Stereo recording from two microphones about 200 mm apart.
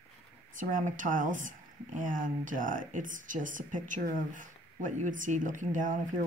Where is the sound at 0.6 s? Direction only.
40° right (ahead or behind).